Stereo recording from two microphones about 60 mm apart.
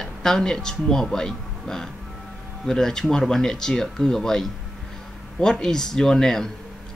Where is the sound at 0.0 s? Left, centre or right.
Centre.